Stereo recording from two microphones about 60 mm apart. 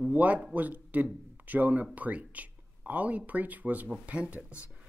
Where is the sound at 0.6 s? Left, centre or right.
Right.